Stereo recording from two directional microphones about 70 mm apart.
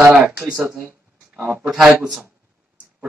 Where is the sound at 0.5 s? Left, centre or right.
Centre.